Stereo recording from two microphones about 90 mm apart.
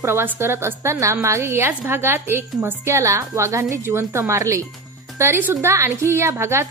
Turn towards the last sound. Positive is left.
turn(degrees=-30)  # may be behind; listen again after turning